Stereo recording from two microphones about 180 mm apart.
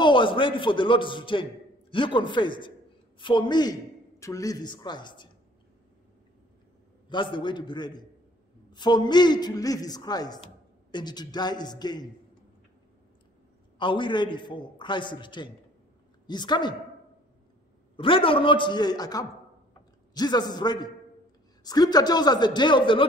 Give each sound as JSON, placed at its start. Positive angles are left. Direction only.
{"t": 0.0, "sound": "a man's voice", "side_deg": 25}
{"t": 7.1, "sound": "a man's voice", "side_deg": 25}
{"t": 13.7, "sound": "a man's voice", "side_deg": 25}
{"t": 17.9, "sound": "a man's voice", "side_deg": 30}